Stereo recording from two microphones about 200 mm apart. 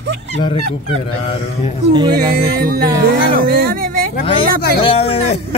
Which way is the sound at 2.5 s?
50° right (ahead or behind).